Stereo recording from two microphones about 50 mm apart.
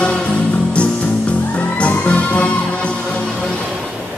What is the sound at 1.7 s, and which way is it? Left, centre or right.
Music, left.